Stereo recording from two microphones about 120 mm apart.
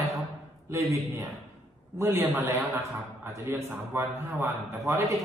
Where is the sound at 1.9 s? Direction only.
20° right (ahead or behind).